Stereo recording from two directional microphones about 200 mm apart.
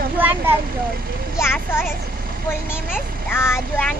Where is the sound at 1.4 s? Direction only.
10° left (ahead or behind).